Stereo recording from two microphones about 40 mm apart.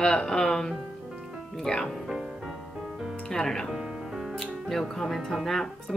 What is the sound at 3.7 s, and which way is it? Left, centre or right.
Music, centre.